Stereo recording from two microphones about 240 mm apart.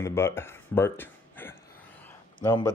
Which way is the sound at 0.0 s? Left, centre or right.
Centre.